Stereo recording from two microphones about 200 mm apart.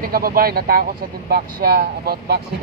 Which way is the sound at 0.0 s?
45° right (ahead or behind).